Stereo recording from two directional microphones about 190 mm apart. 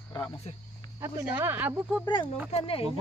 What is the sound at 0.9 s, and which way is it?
Speech, 15° right (ahead or behind).